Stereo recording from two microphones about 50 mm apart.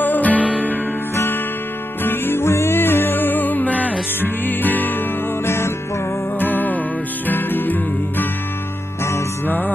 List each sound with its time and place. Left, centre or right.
0.0 s music: left
2.0 s music: left
5.4 s music: left
6.4 s music: left